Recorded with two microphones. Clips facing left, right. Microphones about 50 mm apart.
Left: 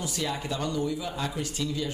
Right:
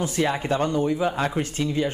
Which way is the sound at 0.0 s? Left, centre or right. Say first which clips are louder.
Right 8 dB; right.